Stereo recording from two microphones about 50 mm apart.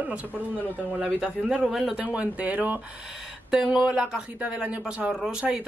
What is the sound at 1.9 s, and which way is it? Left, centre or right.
Speech, right.